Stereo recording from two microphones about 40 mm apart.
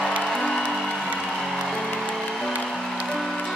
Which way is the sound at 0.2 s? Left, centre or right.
Centre.